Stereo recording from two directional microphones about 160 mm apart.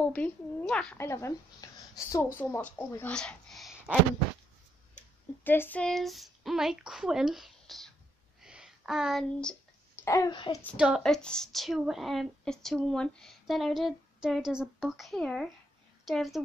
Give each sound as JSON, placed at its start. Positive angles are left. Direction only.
{"t": 0.0, "sound": "a woman's voice", "side_deg": 10}
{"t": 0.9, "sound": "speech", "side_deg": 15}
{"t": 4.9, "sound": "speech", "side_deg": 10}
{"t": 8.4, "sound": "a sound", "side_deg": -5}
{"t": 10.0, "sound": "speech", "side_deg": 20}
{"t": 10.3, "sound": "a child's voice", "side_deg": 30}
{"t": 11.0, "sound": "speech", "side_deg": 5}